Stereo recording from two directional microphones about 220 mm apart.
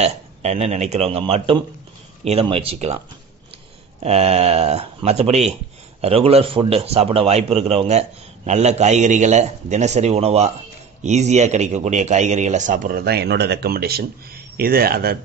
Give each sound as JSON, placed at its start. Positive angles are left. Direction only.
{"t": 0.0, "sound": "a man's voice", "side_deg": -30}
{"t": 4.0, "sound": "a man's voice", "side_deg": -30}